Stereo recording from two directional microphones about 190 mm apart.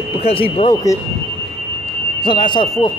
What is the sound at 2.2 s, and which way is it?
Speech, 25° left (ahead or behind).